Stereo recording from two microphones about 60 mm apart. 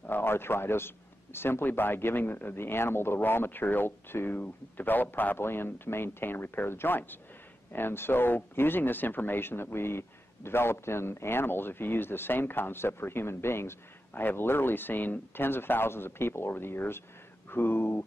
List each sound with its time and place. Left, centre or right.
0.0 s a man's voice: left